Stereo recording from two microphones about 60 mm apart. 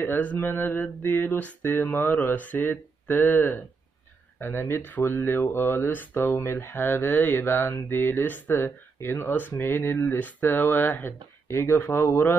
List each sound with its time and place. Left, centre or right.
0.0 s speech: left